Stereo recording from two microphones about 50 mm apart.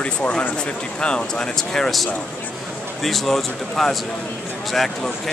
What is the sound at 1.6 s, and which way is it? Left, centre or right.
Speech, centre.